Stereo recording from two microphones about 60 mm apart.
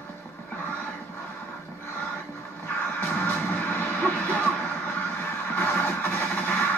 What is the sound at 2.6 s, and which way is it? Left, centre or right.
Music, left.